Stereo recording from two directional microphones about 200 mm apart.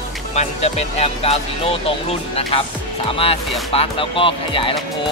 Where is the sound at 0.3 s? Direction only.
35° left (ahead or behind).